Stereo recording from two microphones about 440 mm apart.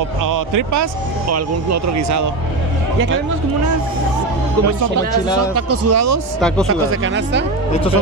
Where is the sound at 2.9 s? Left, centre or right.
Right.